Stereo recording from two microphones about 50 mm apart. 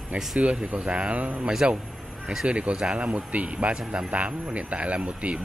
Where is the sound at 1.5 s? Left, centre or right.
Centre.